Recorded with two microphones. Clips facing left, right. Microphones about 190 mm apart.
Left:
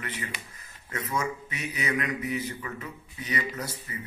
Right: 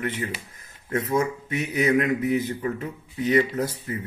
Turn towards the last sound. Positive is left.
turn(degrees=-55)  # may be behind; listen again after turning